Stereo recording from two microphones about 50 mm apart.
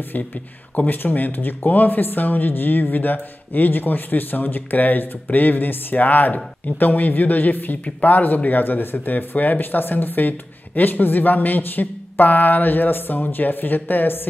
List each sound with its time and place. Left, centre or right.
0.8 s speech: left